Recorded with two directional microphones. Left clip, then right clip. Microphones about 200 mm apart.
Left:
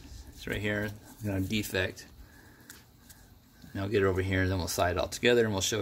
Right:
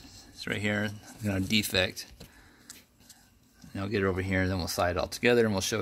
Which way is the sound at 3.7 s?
45° right (ahead or behind).